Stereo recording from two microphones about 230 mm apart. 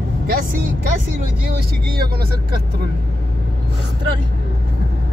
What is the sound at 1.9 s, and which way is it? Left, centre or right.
Speech, right.